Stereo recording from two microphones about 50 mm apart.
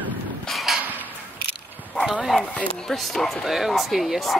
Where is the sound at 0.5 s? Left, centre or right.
Centre.